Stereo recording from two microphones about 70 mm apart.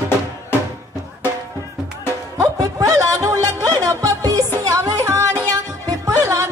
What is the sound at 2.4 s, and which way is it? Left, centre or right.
Music, right.